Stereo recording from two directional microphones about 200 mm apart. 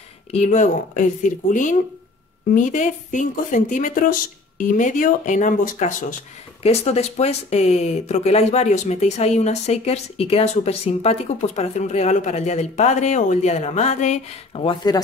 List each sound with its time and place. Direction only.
0.3 s speech: 35° left (ahead or behind)